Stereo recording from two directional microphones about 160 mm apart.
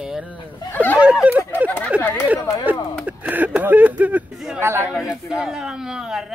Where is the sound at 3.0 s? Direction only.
10° right (ahead or behind).